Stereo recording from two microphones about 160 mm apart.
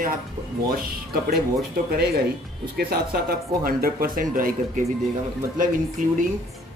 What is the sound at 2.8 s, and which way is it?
Speech, 75° right (ahead or behind).